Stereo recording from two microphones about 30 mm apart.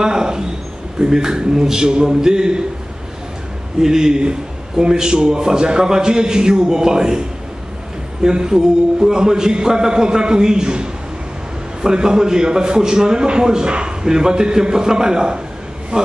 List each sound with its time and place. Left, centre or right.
0.0 s a sound: right
0.9 s a man's voice: right
3.8 s a man's voice: right
15.9 s speech: right